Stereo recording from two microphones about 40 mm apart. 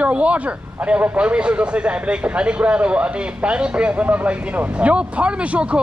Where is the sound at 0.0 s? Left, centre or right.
Right.